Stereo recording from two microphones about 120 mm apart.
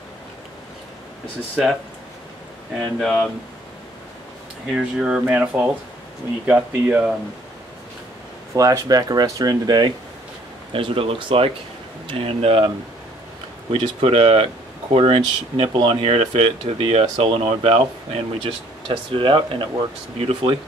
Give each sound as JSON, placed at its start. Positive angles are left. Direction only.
{"t": 2.8, "sound": "speech", "side_deg": 5}
{"t": 4.7, "sound": "speech", "side_deg": -5}
{"t": 8.5, "sound": "speech", "side_deg": -30}
{"t": 10.7, "sound": "speech", "side_deg": -50}